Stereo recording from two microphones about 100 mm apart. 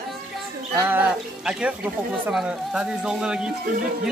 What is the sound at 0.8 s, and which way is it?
Speech, 15° right (ahead or behind).